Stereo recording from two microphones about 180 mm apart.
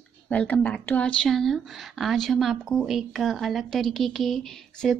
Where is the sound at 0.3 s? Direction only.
5° left (ahead or behind).